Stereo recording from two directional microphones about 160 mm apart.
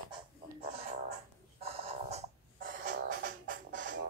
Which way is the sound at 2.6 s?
55° right (ahead or behind).